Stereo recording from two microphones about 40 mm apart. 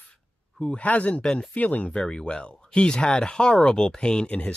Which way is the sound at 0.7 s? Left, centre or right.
Left.